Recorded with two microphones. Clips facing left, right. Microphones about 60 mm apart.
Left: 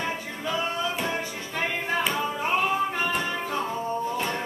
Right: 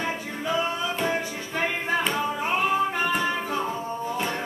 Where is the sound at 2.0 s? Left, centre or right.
Centre.